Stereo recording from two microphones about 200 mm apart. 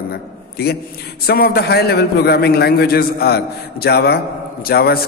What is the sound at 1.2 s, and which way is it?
A man's voice, 50° left (ahead or behind).